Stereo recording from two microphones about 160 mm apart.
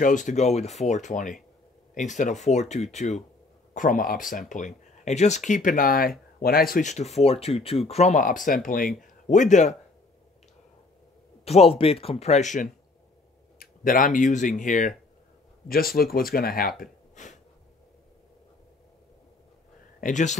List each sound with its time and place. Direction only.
0.0 s speech: 50° left (ahead or behind)
3.7 s speech: 55° left (ahead or behind)
11.4 s speech: 40° left (ahead or behind)
13.6 s speech: 60° left (ahead or behind)
15.7 s speech: 70° left (ahead or behind); by 17.4 s 50° left (ahead or behind)
20.0 s speech: 50° left (ahead or behind)